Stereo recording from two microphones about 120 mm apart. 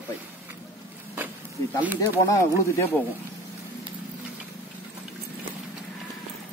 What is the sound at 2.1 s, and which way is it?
Speech, 25° left (ahead or behind).